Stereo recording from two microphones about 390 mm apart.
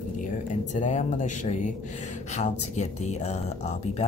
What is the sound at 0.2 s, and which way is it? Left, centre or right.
Speech, centre.